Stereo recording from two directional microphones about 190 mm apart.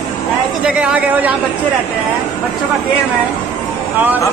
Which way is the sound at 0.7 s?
5° right (ahead or behind).